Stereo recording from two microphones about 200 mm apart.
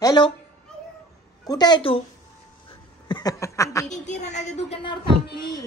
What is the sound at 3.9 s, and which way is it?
A woman's voice, 35° left (ahead or behind).